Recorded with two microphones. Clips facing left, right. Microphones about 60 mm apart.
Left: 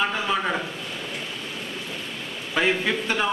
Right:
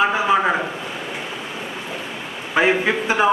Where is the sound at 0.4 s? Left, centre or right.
Right.